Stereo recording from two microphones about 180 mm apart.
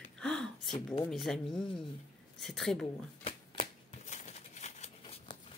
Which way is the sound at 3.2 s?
30° left (ahead or behind).